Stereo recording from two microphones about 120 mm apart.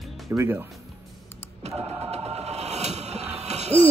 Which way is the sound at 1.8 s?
60° right (ahead or behind).